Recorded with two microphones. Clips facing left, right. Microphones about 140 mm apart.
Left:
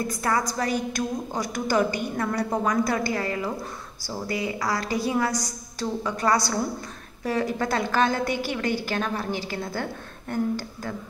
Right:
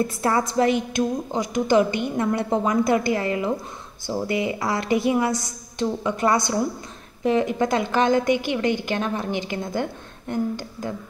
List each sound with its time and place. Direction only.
0.0 s a woman's voice: 25° right (ahead or behind)